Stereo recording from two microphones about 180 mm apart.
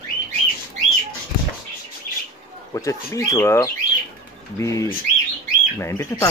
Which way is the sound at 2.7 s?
15° left (ahead or behind).